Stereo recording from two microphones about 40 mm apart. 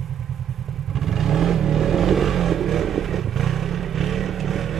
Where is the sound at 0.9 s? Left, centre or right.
Centre.